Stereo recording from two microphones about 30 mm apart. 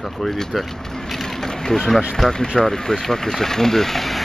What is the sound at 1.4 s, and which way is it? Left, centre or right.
Speech, centre.